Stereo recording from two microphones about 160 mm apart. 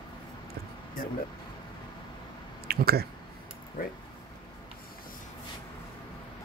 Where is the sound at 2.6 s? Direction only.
75° right (ahead or behind).